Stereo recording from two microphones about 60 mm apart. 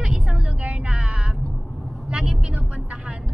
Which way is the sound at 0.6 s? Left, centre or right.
Centre.